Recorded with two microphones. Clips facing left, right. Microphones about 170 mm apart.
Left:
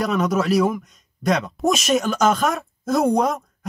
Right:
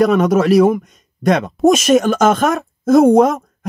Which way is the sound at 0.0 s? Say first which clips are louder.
Right 8 dB; 50° right (ahead or behind).